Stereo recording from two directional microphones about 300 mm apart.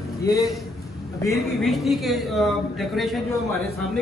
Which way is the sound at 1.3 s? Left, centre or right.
Centre.